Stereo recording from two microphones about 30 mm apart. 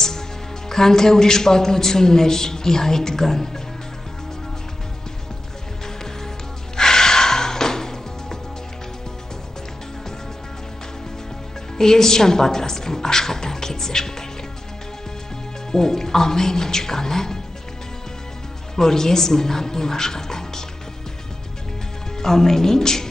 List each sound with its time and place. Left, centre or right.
0.7 s a man's voice: centre
6.8 s music: centre
11.8 s a man's voice: centre
15.7 s a man's voice: centre
18.8 s a man's voice: centre
22.2 s a man's voice: centre